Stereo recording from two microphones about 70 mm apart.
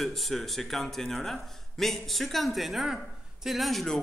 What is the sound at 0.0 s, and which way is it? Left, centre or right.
A man's voice, centre.